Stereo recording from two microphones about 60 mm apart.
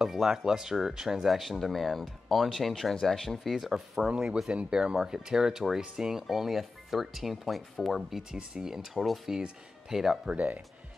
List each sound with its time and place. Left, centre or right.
0.0 s speech: centre
4.1 s speech: centre
8.2 s speech: centre
10.3 s speech: right